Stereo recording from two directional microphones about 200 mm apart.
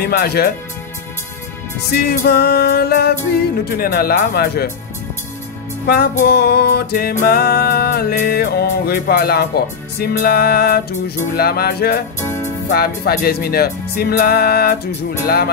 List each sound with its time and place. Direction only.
0.0 s music: 50° left (ahead or behind)
1.9 s music: 55° left (ahead or behind)
5.9 s music: 50° left (ahead or behind)
12.2 s music: 15° left (ahead or behind)
12.7 s music: 50° left (ahead or behind)